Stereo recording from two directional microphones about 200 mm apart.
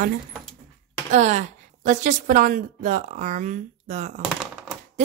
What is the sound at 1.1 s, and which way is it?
A woman's voice, 35° right (ahead or behind).